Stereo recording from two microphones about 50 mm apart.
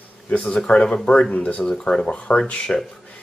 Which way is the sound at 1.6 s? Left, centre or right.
Centre.